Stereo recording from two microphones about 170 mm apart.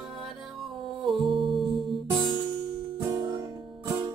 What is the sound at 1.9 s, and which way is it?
Music, 30° right (ahead or behind).